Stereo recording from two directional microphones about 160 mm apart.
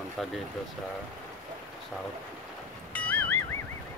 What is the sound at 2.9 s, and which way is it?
Music, 10° left (ahead or behind).